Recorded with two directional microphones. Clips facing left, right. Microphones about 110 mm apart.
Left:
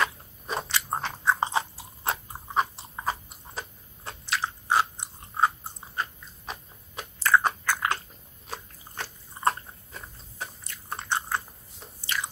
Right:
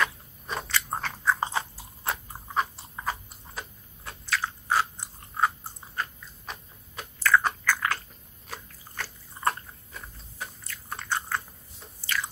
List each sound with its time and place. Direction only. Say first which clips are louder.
0.0 s biting: even; 20° left (ahead or behind)
2.0 s a sound: left 2 dB; 20° left (ahead or behind)
3.1 s biting: left 2 dB; 25° left (ahead or behind)
7.2 s chewing: even; 20° left (ahead or behind)
8.5 s biting: left 2 dB; 20° left (ahead or behind)
10.7 s biting: left 1 dB; 25° left (ahead or behind)